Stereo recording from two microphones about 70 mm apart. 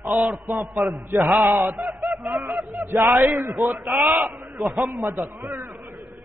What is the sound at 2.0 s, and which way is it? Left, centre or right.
Fowl, centre.